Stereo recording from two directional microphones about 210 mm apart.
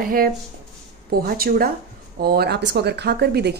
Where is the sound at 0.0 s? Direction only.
45° right (ahead or behind).